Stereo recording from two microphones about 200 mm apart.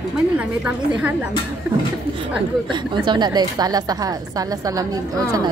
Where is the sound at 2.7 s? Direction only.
20° right (ahead or behind).